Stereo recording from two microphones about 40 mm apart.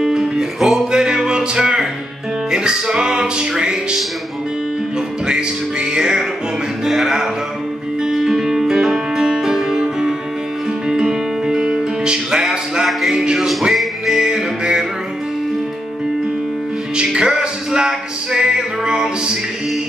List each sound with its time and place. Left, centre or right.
0.0 s music: centre
5.2 s music: right
13.5 s music: centre
14.1 s music: right
16.9 s music: right